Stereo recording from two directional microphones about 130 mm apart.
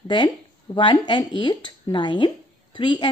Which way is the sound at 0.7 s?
40° left (ahead or behind).